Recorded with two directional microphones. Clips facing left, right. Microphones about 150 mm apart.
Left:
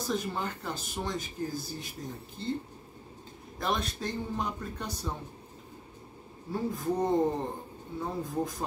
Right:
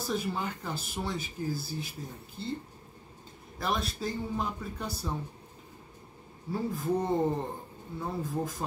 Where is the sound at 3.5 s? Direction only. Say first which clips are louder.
Even; centre (ahead or behind).